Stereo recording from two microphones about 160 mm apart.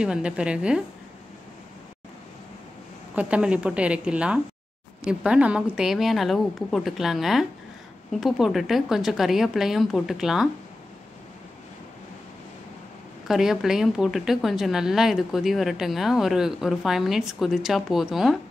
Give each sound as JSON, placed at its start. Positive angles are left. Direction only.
{"t": 0.0, "sound": "a woman's voice", "side_deg": -5}
{"t": 3.2, "sound": "a woman's voice", "side_deg": -5}
{"t": 13.3, "sound": "a woman's voice", "side_deg": -5}